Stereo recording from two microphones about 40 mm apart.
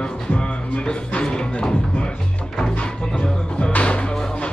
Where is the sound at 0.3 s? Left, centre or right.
Left.